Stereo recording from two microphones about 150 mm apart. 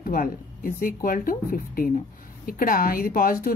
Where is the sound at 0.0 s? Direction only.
70° left (ahead or behind).